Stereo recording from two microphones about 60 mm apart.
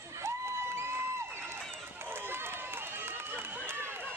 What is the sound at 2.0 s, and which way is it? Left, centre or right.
Run, right.